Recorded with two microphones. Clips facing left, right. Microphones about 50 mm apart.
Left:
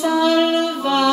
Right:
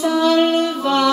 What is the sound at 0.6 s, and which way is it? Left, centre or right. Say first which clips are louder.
Music: right 1 dB; centre.